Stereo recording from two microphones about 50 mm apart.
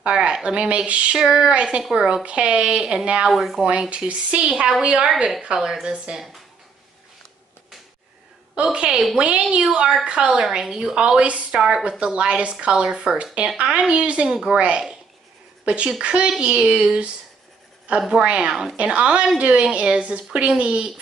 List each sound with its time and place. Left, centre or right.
0.0 s speech: centre
1.2 s speech: centre
3.3 s speech: centre
4.1 s speech: right
8.7 s a woman's voice: centre